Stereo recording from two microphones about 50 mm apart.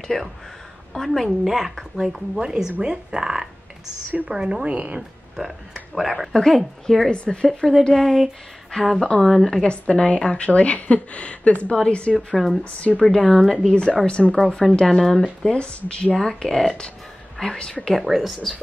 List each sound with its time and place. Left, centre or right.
0.1 s a woman's voice: centre; by 5.0 s right
5.9 s speech: centre
7.1 s a woman's voice: left
7.4 s speech: centre
9.7 s a woman's voice: centre
13.0 s speech: centre
13.7 s a woman's voice: centre
14.8 s speech: centre
15.4 s a woman's voice: centre
16.2 s speech: centre
17.8 s speech: centre